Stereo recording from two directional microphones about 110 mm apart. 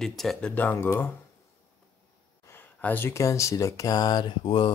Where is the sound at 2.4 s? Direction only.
20° left (ahead or behind); by 4.3 s 40° left (ahead or behind).